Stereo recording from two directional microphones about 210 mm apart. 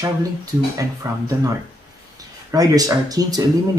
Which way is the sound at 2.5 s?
15° right (ahead or behind).